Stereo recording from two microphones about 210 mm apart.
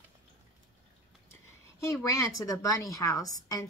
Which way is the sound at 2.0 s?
15° left (ahead or behind).